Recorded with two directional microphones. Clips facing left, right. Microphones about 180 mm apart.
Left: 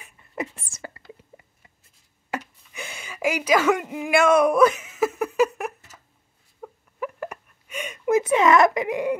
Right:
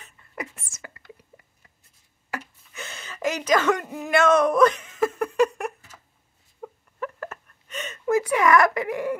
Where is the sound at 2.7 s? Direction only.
10° left (ahead or behind).